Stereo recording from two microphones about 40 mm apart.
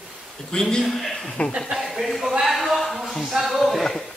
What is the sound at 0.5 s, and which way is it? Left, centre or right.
Speech, centre.